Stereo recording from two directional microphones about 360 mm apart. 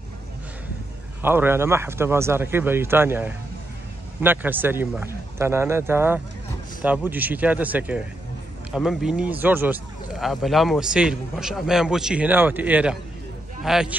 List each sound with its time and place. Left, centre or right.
1.2 s a man's voice: centre